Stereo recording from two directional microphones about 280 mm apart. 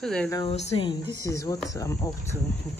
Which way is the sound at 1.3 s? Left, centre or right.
Centre.